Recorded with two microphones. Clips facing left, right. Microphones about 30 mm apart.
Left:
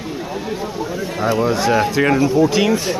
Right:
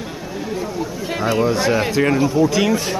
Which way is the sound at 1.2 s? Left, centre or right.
Centre.